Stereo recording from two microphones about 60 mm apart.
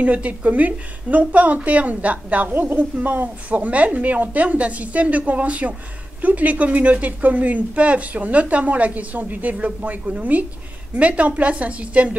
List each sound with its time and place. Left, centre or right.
0.0 s a woman's voice: right